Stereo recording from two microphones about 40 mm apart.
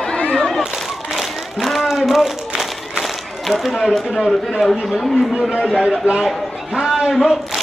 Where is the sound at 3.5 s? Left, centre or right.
Centre.